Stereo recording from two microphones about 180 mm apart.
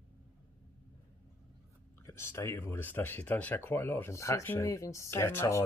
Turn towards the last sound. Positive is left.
turn(degrees=15)  # may be behind; listen again after turning